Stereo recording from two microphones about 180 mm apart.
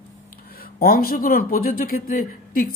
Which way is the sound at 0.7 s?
55° left (ahead or behind).